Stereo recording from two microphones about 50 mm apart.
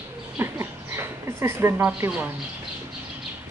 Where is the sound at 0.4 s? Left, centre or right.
Right.